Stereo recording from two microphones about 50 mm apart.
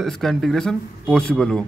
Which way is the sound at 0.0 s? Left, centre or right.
Centre.